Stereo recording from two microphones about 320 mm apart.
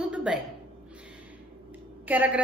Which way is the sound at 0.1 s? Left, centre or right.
Centre.